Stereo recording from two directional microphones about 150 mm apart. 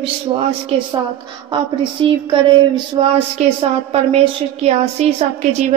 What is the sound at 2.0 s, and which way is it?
Speech, 35° right (ahead or behind).